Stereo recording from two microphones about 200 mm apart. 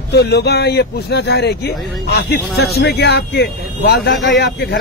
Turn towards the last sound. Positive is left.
turn(degrees=55)  # may be behind; listen again after turning